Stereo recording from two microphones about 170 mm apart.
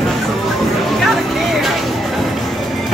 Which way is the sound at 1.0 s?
Centre (ahead or behind).